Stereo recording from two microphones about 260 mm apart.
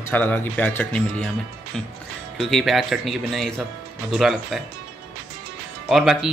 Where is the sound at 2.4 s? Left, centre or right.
Centre.